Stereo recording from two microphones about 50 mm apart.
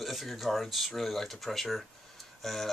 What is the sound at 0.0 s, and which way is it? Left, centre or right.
Speech, centre.